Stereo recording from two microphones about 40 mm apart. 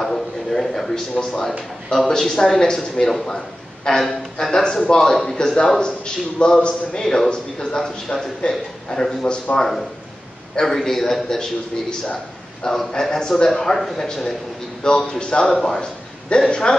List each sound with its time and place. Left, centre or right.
0.0 s a man's voice: centre
9.2 s a man's voice: left
9.6 s speech: centre
12.6 s a man's voice: centre